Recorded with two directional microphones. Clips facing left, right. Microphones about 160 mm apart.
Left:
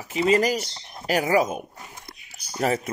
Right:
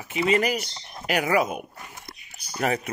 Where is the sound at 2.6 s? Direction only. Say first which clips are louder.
Left 2 dB; 35° left (ahead or behind).